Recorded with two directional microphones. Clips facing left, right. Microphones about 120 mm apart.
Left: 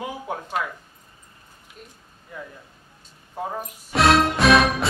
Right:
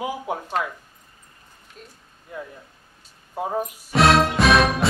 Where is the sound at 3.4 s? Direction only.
15° right (ahead or behind).